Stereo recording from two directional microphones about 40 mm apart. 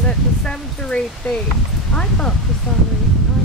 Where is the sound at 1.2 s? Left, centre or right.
Left.